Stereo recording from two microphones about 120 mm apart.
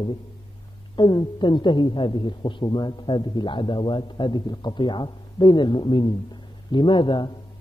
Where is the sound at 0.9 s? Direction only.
40° left (ahead or behind).